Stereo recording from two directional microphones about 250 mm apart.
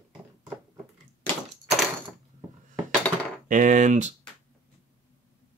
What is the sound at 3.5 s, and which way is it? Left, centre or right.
Speech, right.